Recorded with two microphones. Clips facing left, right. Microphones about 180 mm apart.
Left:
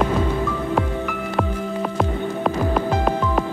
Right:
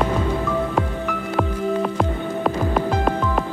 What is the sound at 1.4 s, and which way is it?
Music, centre (ahead or behind).